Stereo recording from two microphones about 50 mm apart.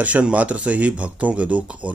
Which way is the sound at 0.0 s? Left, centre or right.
Right.